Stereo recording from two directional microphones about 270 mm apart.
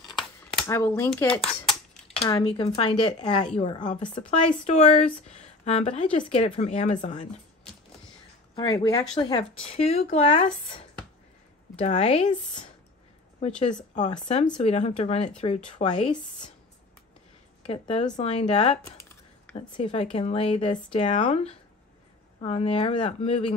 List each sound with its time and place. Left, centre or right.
0.6 s speech: centre
8.5 s speech: centre
11.8 s speech: left
13.9 s speech: left
17.6 s speech: left